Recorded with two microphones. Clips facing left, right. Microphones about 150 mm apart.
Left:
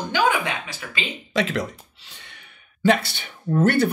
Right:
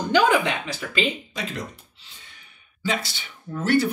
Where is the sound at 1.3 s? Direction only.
90° left.